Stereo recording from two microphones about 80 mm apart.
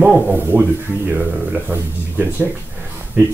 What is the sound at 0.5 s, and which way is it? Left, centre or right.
Speech, right.